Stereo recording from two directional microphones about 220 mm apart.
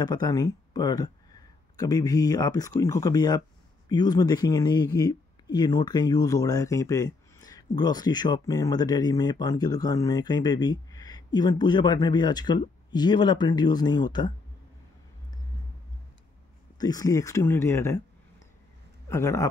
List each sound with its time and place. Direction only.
0.0 s speech: 20° left (ahead or behind)
16.7 s speech: 15° left (ahead or behind)
19.0 s speech: 15° left (ahead or behind)